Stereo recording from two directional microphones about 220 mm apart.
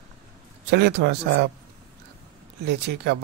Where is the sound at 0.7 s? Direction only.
50° right (ahead or behind).